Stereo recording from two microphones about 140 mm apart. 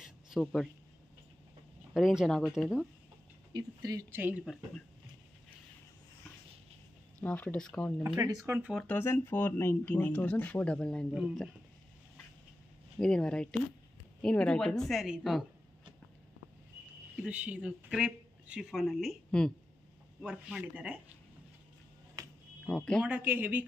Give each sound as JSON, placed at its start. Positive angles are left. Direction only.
{"t": 0.0, "sound": "a sound", "side_deg": 0}
{"t": 2.0, "sound": "speech", "side_deg": -5}
{"t": 3.5, "sound": "speech", "side_deg": -25}
{"t": 4.1, "sound": "speech", "side_deg": -15}
{"t": 7.2, "sound": "speech", "side_deg": 10}
{"t": 8.5, "sound": "speech", "side_deg": -15}
{"t": 8.7, "sound": "speech", "side_deg": 10}
{"t": 13.0, "sound": "speech", "side_deg": 5}
{"t": 17.2, "sound": "speech", "side_deg": -10}
{"t": 22.2, "sound": "a sound", "side_deg": -25}
{"t": 22.7, "sound": "speech", "side_deg": 5}
{"t": 23.0, "sound": "speech", "side_deg": -10}